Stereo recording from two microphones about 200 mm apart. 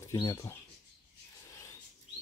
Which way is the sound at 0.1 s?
15° left (ahead or behind).